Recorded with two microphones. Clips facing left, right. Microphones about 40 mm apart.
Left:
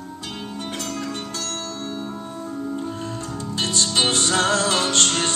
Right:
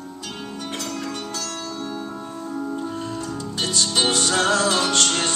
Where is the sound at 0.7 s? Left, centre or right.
Left.